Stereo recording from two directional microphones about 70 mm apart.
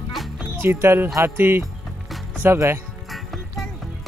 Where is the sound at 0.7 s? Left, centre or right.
Right.